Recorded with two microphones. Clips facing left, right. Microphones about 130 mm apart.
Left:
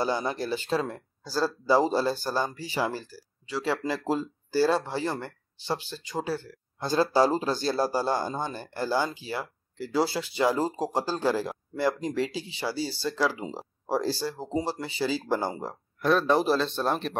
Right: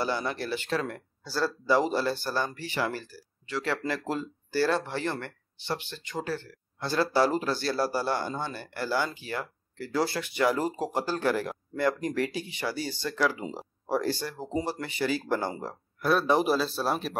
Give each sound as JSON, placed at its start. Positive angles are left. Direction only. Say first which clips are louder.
{"t": 0.0, "sound": "speech", "louder": "left 2 dB", "side_deg": 20}
{"t": 1.8, "sound": "speech", "louder": "left 4 dB", "side_deg": 35}
{"t": 2.0, "sound": "speech", "louder": "left 2 dB", "side_deg": 15}
{"t": 13.1, "sound": "speech", "louder": "right 2 dB", "side_deg": 25}
{"t": 14.4, "sound": "speech", "louder": "left 1 dB", "side_deg": 0}
{"t": 15.0, "sound": "speech", "louder": "left 1 dB", "side_deg": 20}
{"t": 16.0, "sound": "speech", "louder": "left 1 dB", "side_deg": -5}